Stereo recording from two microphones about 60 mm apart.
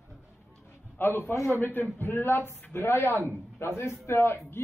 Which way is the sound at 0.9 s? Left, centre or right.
Left.